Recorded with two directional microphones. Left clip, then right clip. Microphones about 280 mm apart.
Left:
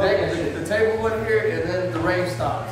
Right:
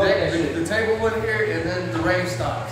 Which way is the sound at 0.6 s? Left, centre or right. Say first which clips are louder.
Left 3 dB; centre.